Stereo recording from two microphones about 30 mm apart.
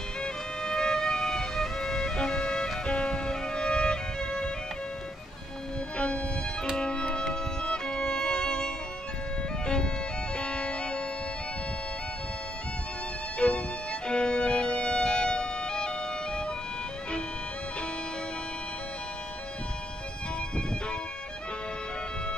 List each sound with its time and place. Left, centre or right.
0.2 s music: centre
5.9 s music: left
10.3 s music: left
13.4 s violin: left